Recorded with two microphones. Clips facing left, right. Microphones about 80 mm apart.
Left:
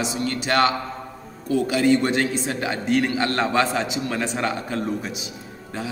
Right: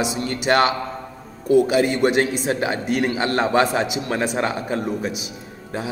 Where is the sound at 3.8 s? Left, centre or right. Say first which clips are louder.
Right 2 dB; right.